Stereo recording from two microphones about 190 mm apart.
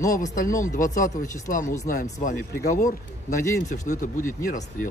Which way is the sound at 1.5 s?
45° left (ahead or behind).